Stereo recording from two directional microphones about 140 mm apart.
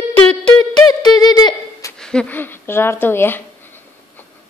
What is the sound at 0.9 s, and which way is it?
Speech, 30° left (ahead or behind).